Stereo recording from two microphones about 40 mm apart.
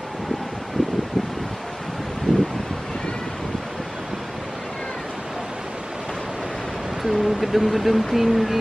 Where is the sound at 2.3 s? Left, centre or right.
Centre.